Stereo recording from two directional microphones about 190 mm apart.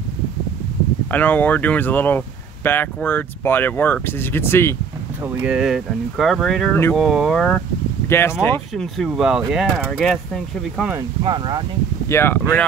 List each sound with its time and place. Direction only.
1.1 s speech: 10° left (ahead or behind)
5.2 s speech: 10° right (ahead or behind)
8.1 s speech: 15° left (ahead or behind)
8.9 s speech: centre (ahead or behind)
11.2 s speech: 25° right (ahead or behind)
12.1 s speech: 10° left (ahead or behind)